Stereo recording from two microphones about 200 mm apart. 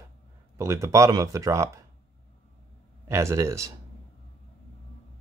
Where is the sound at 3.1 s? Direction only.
15° right (ahead or behind).